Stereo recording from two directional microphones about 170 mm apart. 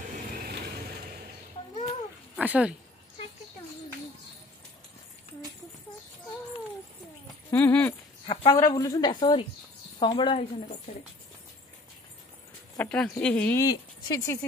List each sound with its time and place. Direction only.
2.3 s speech: 10° right (ahead or behind)
7.5 s speech: 10° left (ahead or behind)
8.3 s a sound: 35° left (ahead or behind)
8.5 s a woman's voice: 20° left (ahead or behind)
12.7 s speech: 5° left (ahead or behind)
13.7 s speech: 20° left (ahead or behind)